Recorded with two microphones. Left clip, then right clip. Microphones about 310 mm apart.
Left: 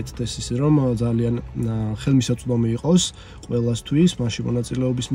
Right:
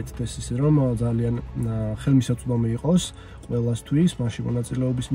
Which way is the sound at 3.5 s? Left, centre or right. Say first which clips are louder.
Left 3 dB; centre.